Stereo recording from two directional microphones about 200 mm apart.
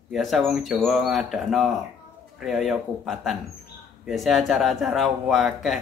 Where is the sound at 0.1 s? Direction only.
Centre (ahead or behind).